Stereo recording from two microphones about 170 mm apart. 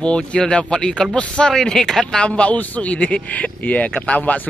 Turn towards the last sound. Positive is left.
turn(degrees=10)  # may be behind; listen again after turning